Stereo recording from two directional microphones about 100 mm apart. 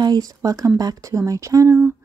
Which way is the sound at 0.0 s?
40° right (ahead or behind).